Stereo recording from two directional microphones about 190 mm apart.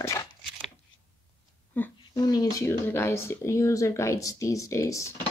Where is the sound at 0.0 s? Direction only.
15° left (ahead or behind).